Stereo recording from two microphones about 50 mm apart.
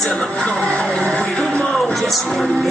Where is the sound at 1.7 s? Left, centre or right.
Centre.